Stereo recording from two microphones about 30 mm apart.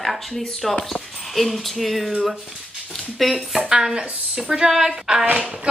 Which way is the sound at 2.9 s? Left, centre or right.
Centre.